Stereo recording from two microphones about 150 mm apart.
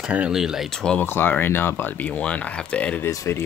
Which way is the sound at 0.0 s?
5° right (ahead or behind).